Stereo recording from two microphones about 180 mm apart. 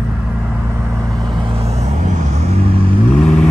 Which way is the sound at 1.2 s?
25° right (ahead or behind).